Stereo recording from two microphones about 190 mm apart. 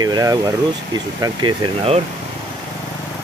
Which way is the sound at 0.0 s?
20° right (ahead or behind).